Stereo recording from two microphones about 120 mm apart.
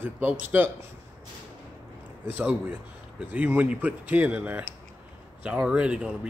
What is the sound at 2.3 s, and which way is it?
Speech, 15° right (ahead or behind).